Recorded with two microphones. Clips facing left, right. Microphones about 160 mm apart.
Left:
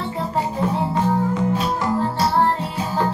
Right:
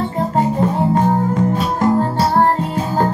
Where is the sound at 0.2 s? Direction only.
45° right (ahead or behind).